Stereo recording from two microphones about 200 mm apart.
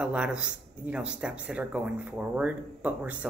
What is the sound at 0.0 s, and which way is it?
Speech, 5° right (ahead or behind).